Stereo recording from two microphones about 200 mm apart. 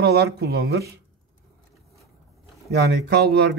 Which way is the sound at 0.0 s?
55° right (ahead or behind).